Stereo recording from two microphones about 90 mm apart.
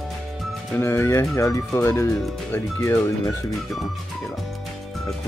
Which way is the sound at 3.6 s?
Centre (ahead or behind).